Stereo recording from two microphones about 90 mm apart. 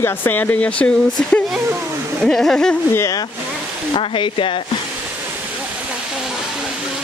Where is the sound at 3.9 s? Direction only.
75° left (ahead or behind).